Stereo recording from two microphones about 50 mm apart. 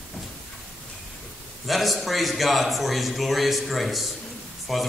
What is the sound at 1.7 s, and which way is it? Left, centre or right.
A man's voice, centre.